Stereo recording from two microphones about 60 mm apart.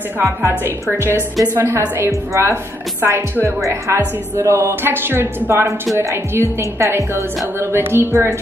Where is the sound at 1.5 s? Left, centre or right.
Right.